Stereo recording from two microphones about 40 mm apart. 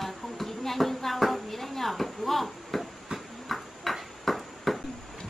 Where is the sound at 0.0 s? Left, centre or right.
Centre.